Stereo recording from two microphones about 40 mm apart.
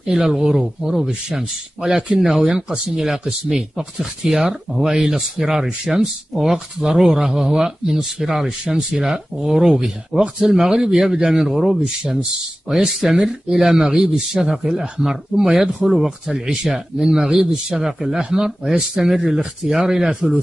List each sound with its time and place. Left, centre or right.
0.0 s speech: centre
15.5 s speech: centre
16.3 s speech: centre